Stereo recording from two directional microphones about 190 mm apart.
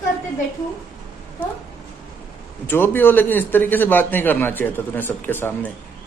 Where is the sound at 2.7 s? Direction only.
10° left (ahead or behind).